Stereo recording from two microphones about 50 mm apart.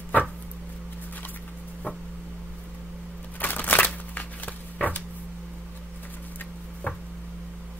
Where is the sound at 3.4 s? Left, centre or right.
Left.